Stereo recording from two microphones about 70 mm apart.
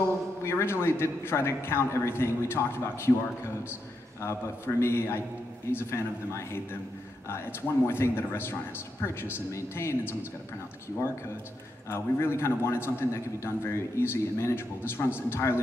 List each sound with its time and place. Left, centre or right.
0.4 s a man's voice: left
4.2 s a man's voice: left
7.8 s a man's voice: left
11.9 s a man's voice: left